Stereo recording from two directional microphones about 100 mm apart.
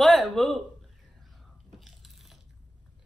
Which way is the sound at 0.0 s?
5° left (ahead or behind).